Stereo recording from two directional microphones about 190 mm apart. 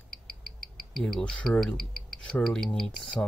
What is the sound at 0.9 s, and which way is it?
Speech, centre (ahead or behind).